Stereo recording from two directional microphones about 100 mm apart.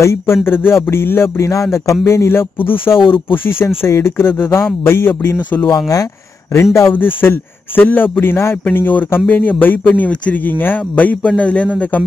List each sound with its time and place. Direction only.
0.0 s a man's voice: 25° left (ahead or behind)